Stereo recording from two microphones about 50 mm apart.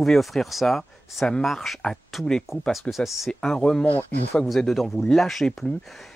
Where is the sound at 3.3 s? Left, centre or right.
Centre.